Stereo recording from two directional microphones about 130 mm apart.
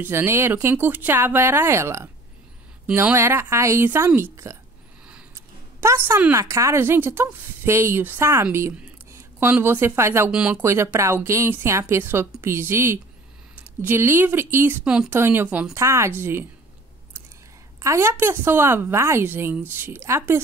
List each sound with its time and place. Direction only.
0.0 s a woman's voice: 20° right (ahead or behind)
5.3 s a sound: 20° right (ahead or behind)
6.3 s speech: 25° right (ahead or behind)
10.3 s a woman's voice: 5° right (ahead or behind)
10.6 s speech: 20° right (ahead or behind)
14.9 s speech: 5° right (ahead or behind)
15.1 s a woman's voice: 15° right (ahead or behind)
15.7 s speech: 20° right (ahead or behind)
17.7 s a woman's voice: 20° right (ahead or behind)